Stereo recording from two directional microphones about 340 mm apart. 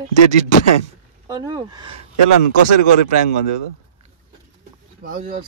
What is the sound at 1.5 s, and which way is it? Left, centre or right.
Speech, centre.